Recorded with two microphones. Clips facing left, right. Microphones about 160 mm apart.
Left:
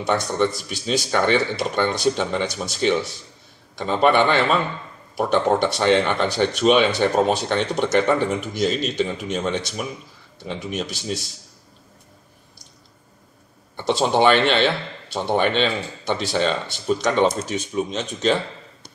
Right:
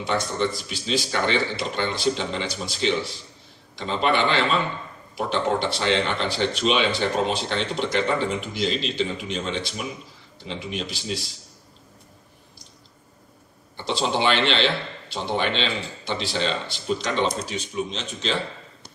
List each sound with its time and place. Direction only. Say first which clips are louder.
0.0 s speech: left 4 dB; 50° left (ahead or behind)
13.8 s speech: left 6 dB; 50° left (ahead or behind)